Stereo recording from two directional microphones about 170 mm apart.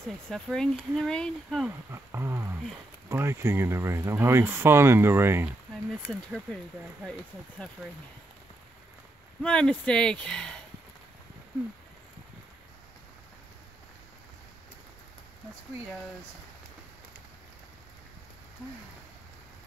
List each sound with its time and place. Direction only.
0.3 s speech: centre (ahead or behind)
1.9 s speech: 15° right (ahead or behind); by 7.7 s 5° left (ahead or behind)
9.4 s speech: 5° left (ahead or behind)